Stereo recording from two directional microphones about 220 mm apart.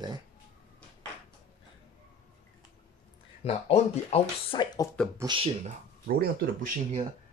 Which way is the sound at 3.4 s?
30° left (ahead or behind).